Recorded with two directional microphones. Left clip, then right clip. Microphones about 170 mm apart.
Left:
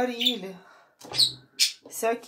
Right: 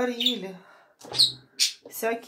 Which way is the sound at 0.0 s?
15° right (ahead or behind).